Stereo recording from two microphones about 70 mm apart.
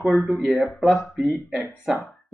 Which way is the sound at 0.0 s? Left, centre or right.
Centre.